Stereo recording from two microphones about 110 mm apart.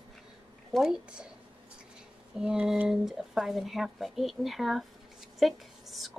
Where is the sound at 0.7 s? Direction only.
5° right (ahead or behind).